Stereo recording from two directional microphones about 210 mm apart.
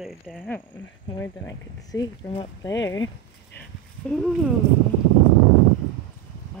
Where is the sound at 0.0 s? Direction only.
Centre (ahead or behind).